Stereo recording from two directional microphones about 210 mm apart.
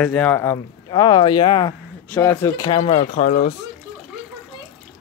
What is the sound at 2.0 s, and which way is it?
Speech, 10° left (ahead or behind).